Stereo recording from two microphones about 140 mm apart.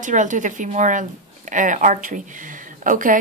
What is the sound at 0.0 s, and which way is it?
A woman's voice, 65° right (ahead or behind).